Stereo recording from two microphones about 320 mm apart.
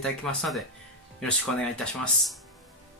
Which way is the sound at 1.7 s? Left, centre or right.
Centre.